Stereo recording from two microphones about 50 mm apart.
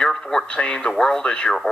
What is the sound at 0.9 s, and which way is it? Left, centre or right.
Speech, centre.